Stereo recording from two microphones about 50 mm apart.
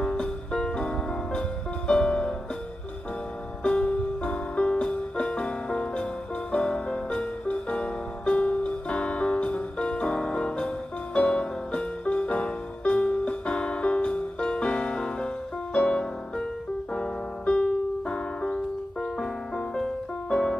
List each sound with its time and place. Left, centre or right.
0.0 s music: centre
3.6 s music: centre
16.9 s keyboard: centre